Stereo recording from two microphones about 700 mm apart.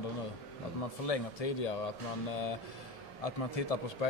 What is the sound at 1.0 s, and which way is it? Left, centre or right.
Speech, left.